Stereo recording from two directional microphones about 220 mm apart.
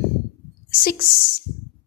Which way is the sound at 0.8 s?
45° left (ahead or behind).